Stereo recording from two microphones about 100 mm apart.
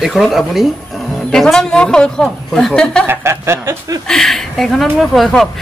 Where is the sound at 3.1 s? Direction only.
25° right (ahead or behind).